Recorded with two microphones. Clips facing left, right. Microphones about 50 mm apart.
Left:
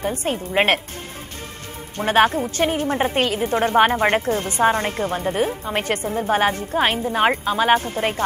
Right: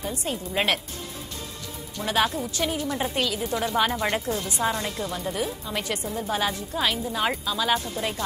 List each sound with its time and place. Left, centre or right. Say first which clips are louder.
0.0 s a woman's voice: left 7 dB; left
2.0 s a woman's voice: left 8 dB; left